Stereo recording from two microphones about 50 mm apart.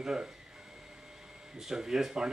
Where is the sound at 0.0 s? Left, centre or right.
Centre.